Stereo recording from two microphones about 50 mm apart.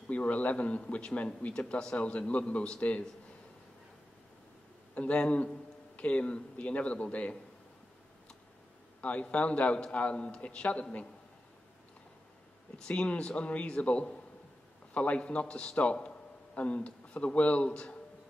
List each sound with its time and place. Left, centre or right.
0.1 s a man's voice: left
4.9 s a man's voice: left
9.0 s a man's voice: left
12.7 s a man's voice: left